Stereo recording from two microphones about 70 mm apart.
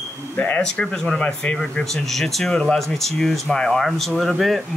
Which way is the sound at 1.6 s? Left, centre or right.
Centre.